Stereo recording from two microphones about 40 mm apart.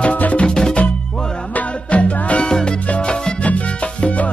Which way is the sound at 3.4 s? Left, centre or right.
Left.